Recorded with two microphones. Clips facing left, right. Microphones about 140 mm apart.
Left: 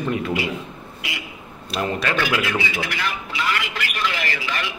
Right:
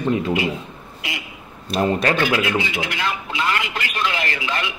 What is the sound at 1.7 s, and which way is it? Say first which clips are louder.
Speech: right 5 dB; 40° right (ahead or behind).